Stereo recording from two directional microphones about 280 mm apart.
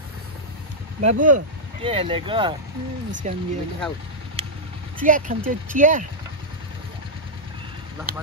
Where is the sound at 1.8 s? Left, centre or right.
Centre.